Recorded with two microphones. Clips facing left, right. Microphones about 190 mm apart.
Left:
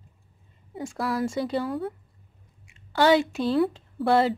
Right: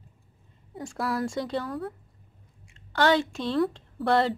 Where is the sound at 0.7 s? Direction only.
Centre (ahead or behind).